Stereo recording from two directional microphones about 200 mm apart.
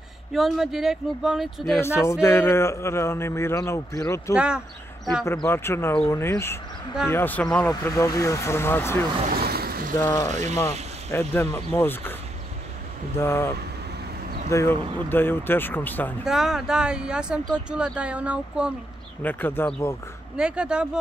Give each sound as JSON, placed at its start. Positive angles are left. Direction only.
{"t": 0.3, "sound": "speech", "side_deg": 0}
{"t": 1.8, "sound": "a man's voice", "side_deg": 15}
{"t": 4.4, "sound": "speech", "side_deg": -5}
{"t": 5.2, "sound": "a man's voice", "side_deg": 15}
{"t": 9.4, "sound": "boat", "side_deg": -50}
{"t": 10.0, "sound": "a man's voice", "side_deg": 15}
{"t": 10.3, "sound": "speech", "side_deg": -35}
{"t": 11.1, "sound": "a man's voice", "side_deg": 10}
{"t": 13.2, "sound": "a man's voice", "side_deg": 15}
{"t": 16.3, "sound": "speech", "side_deg": 0}
{"t": 19.2, "sound": "a man's voice", "side_deg": 10}
{"t": 20.3, "sound": "speech", "side_deg": -5}